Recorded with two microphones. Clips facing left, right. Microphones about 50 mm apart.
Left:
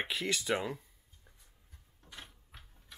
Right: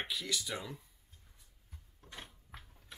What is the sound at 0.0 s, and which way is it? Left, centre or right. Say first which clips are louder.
Speech: left 4 dB; left.